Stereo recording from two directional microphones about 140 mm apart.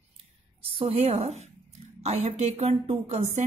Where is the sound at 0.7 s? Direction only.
50° right (ahead or behind).